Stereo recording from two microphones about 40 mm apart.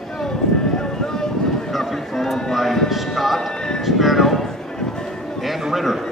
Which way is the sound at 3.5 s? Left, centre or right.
Centre.